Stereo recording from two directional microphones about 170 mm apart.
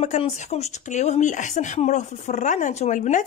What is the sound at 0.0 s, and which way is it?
Speech, 40° left (ahead or behind).